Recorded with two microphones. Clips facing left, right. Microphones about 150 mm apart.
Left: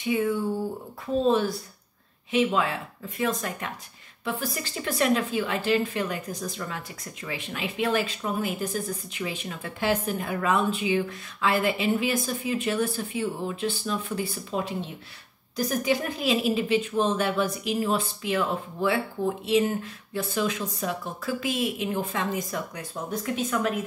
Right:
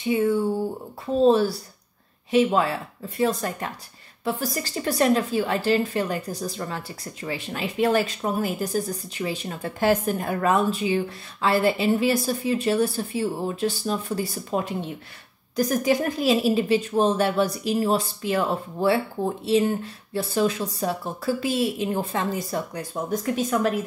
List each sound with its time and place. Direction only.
0.0 s a woman's voice: 30° right (ahead or behind)